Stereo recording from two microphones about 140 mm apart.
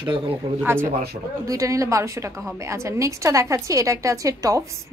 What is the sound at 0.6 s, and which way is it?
A woman's voice, 15° right (ahead or behind).